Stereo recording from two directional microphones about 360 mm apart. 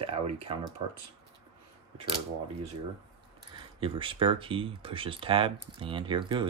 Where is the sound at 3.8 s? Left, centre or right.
Centre.